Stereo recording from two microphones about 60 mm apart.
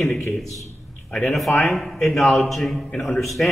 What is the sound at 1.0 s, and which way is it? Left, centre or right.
Speech, centre.